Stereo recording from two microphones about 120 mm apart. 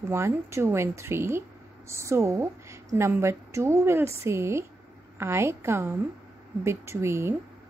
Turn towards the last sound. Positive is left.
turn(degrees=-20)  # may be behind; listen again after turning